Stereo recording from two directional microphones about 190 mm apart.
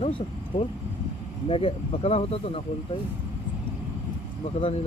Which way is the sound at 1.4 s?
30° left (ahead or behind).